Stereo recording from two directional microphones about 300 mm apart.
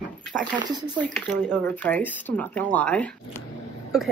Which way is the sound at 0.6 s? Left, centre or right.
Centre.